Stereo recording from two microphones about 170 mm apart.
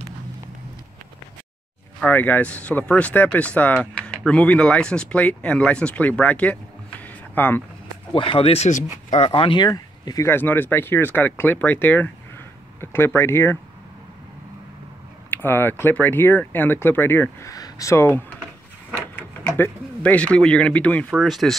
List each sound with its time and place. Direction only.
2.0 s speech: 10° left (ahead or behind)
8.1 s speech: 30° left (ahead or behind); by 13.6 s 15° left (ahead or behind)
15.2 s speech: 10° left (ahead or behind)